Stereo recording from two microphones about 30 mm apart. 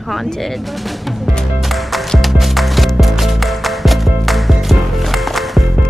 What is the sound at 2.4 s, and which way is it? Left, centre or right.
Music, centre.